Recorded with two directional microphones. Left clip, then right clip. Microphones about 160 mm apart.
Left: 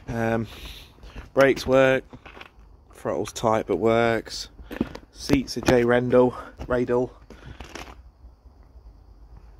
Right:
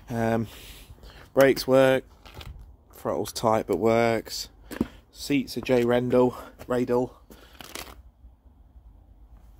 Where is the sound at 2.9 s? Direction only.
10° right (ahead or behind).